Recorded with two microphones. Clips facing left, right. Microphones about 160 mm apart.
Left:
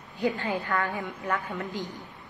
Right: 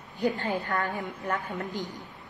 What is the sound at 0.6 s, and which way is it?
Speech, 20° right (ahead or behind).